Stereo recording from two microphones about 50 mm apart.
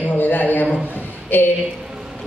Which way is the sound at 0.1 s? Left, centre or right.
Left.